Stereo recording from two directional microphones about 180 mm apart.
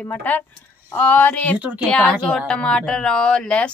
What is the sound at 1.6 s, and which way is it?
Speech, 5° right (ahead or behind).